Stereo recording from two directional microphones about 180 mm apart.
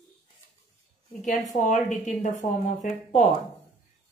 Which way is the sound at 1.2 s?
40° left (ahead or behind).